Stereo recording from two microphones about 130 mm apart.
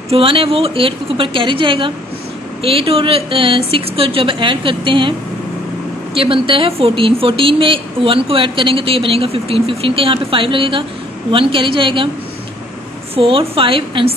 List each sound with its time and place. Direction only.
0.1 s a woman's voice: 45° right (ahead or behind)
6.1 s a woman's voice: 45° right (ahead or behind)
13.1 s a woman's voice: 45° right (ahead or behind)